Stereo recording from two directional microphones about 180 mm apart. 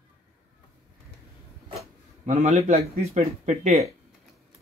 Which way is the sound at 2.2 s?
45° right (ahead or behind).